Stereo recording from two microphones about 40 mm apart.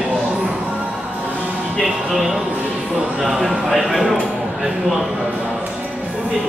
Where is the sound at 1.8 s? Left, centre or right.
Centre.